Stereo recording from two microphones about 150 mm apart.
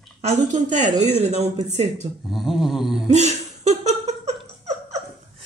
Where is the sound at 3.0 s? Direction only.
50° right (ahead or behind).